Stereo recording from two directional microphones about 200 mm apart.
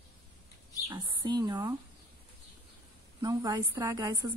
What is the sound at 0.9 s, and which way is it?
Speech, 25° right (ahead or behind).